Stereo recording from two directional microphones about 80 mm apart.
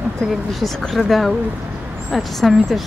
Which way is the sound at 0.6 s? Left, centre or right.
Centre.